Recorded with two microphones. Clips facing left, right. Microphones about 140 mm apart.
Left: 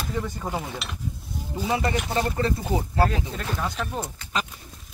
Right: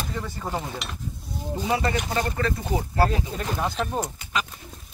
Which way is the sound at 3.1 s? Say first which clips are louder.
Right 2 dB; 10° right (ahead or behind).